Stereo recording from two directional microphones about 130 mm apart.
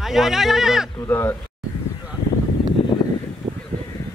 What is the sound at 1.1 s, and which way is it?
Speech, 15° left (ahead or behind).